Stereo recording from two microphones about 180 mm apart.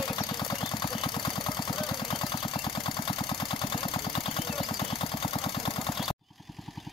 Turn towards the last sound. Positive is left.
turn(degrees=30)  # may be behind; listen again after turning